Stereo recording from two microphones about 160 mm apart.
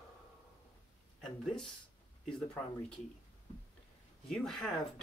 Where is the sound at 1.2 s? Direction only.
Centre (ahead or behind).